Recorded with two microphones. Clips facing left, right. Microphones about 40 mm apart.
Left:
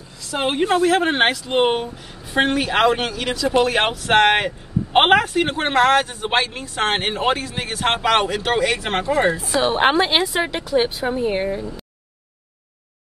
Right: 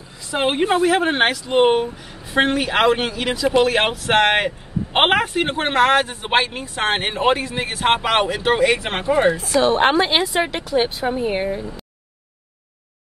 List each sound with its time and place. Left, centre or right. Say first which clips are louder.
0.2 s a man's voice: right 1 dB; right
1.0 s speech: even; centre
3.2 s speech: right 1 dB; right
3.6 s a man's voice: right 1 dB; centre
6.7 s a man's voice: left 1 dB; centre
10.0 s speech: right 1 dB; centre